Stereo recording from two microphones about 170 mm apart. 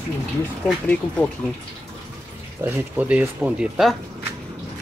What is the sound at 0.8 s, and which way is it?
Speech, 5° left (ahead or behind).